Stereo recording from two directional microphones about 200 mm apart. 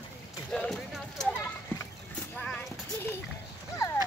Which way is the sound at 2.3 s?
5° left (ahead or behind).